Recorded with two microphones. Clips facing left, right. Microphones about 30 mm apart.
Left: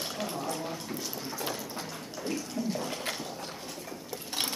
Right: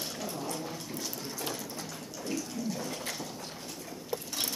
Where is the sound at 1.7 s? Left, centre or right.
Left.